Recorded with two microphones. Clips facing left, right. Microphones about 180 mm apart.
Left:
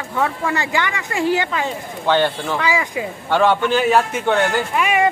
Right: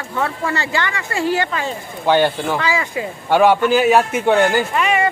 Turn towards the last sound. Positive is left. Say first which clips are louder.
# even
turn(degrees=10)  # may be behind; listen again after turning